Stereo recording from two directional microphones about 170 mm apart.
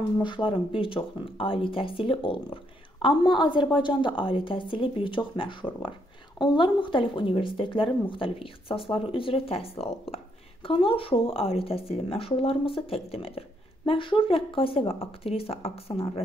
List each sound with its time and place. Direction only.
0.2 s speech: 30° left (ahead or behind)